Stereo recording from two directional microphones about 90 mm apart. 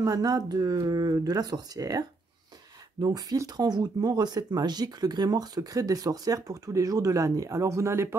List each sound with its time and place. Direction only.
0.0 s speech: 40° right (ahead or behind)